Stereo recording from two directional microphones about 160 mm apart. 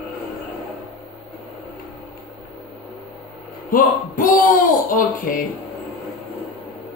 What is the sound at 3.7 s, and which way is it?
Speech, 60° left (ahead or behind).